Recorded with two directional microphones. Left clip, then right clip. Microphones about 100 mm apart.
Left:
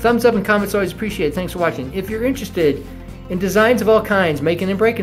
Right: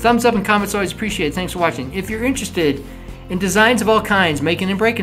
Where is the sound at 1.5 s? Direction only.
5° left (ahead or behind).